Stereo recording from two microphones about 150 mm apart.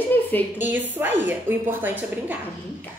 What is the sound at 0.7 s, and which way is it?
A woman's voice, 15° right (ahead or behind).